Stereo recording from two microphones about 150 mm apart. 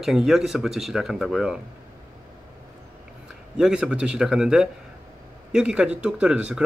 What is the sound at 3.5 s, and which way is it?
Speech, 5° right (ahead or behind).